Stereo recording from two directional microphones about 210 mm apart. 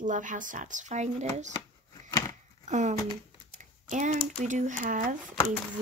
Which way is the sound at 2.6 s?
35° right (ahead or behind).